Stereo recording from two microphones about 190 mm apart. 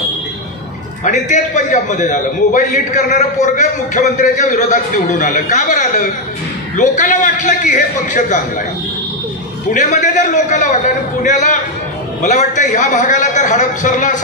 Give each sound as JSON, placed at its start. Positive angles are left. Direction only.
{"t": 1.0, "sound": "a man's voice", "side_deg": 40}
{"t": 9.7, "sound": "a man's voice", "side_deg": 40}